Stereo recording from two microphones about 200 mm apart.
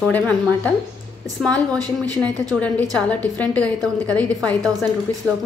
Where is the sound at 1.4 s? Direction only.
Centre (ahead or behind).